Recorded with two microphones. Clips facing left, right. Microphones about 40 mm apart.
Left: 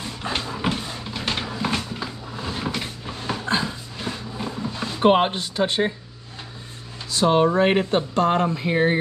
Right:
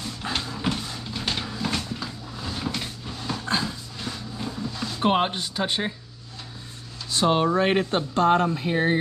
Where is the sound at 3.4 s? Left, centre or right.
Centre.